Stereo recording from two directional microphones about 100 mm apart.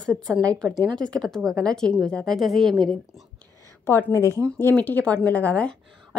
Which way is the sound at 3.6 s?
25° left (ahead or behind).